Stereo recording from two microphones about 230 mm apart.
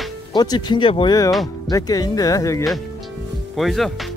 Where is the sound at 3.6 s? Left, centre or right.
Centre.